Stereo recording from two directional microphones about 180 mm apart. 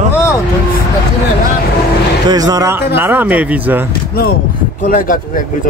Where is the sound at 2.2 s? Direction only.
20° right (ahead or behind).